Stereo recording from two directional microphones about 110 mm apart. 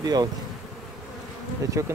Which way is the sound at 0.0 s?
35° right (ahead or behind).